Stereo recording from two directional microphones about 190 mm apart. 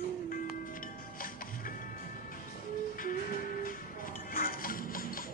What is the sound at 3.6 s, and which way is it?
Music, 45° left (ahead or behind).